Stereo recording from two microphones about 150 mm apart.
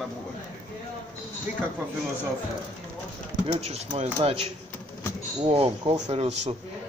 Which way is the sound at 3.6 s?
45° right (ahead or behind).